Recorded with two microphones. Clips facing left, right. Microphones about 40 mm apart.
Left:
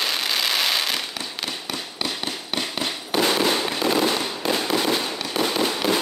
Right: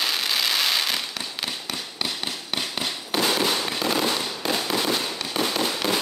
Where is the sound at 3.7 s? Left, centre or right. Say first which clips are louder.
Left 3 dB; centre.